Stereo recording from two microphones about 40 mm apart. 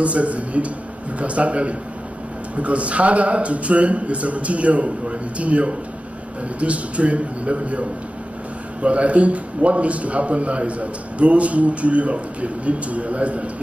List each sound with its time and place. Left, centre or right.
0.0 s a man's voice: right
8.8 s a man's voice: right